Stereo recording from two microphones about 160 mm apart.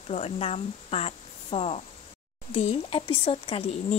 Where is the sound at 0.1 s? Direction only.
40° left (ahead or behind).